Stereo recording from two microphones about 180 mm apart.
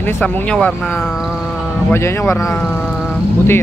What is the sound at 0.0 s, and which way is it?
Speech, 10° left (ahead or behind).